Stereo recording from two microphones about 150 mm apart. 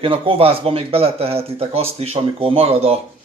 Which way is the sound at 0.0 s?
35° right (ahead or behind).